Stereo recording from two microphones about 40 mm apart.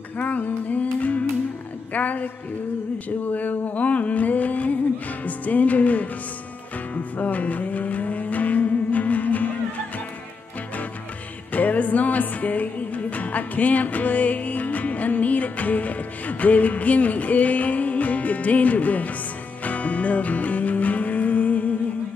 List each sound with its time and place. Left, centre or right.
0.2 s music: left
2.0 s a woman's voice: left
3.3 s music: left
7.2 s music: left
11.5 s music: left